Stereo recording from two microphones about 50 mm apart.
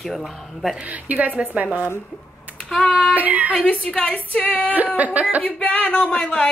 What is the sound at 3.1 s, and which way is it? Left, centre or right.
Speech, right.